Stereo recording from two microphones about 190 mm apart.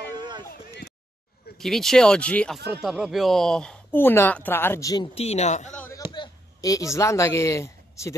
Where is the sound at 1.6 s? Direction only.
Centre (ahead or behind); by 5.1 s 20° left (ahead or behind).